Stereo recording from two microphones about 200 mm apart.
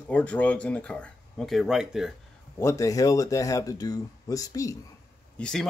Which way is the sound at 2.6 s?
15° left (ahead or behind).